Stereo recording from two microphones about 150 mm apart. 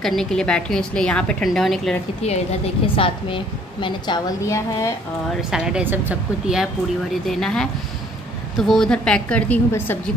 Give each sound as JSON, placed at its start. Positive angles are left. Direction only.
{"t": 0.0, "sound": "a woman's voice", "side_deg": 5}
{"t": 2.2, "sound": "a woman's voice", "side_deg": 40}
{"t": 4.5, "sound": "a woman's voice", "side_deg": 20}
{"t": 5.3, "sound": "a woman's voice", "side_deg": -5}
{"t": 7.2, "sound": "a woman's voice", "side_deg": 5}